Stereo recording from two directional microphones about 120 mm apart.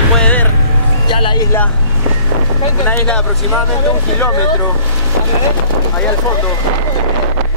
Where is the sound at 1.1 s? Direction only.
45° left (ahead or behind).